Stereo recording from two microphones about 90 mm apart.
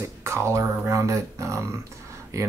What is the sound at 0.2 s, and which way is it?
Speech, 30° right (ahead or behind).